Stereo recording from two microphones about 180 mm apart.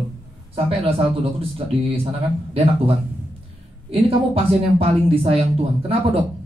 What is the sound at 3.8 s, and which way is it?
Speech, 30° right (ahead or behind).